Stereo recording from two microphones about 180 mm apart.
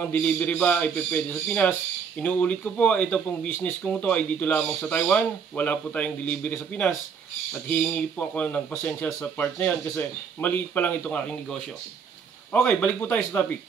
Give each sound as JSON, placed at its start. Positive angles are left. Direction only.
{"t": 0.0, "sound": "speech", "side_deg": 10}